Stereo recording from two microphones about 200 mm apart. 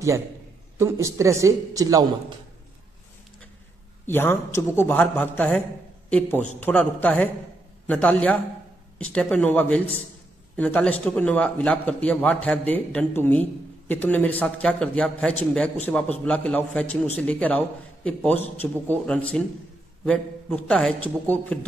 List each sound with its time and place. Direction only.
0.7 s a man's voice: 15° right (ahead or behind)
4.1 s a man's voice: 10° left (ahead or behind)